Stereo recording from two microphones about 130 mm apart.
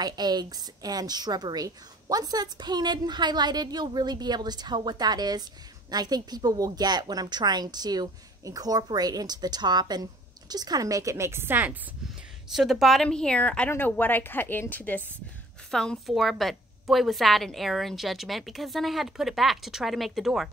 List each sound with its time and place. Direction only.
0.0 s a woman's voice: 30° right (ahead or behind); by 11.7 s 15° right (ahead or behind)
12.4 s a woman's voice: 5° right (ahead or behind)